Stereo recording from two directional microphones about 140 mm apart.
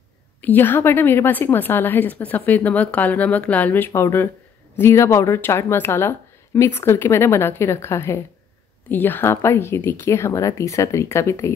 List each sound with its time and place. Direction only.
0.4 s a woman's voice: 15° left (ahead or behind)